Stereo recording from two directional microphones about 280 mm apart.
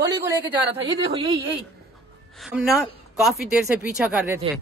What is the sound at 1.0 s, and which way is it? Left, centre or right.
Speech, centre.